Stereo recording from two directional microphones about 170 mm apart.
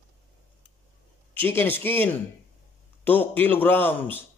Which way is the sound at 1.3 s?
10° left (ahead or behind).